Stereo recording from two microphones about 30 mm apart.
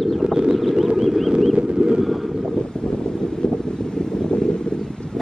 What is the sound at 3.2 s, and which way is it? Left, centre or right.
Wind, left.